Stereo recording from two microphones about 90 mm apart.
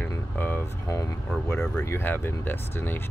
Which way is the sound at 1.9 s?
25° left (ahead or behind).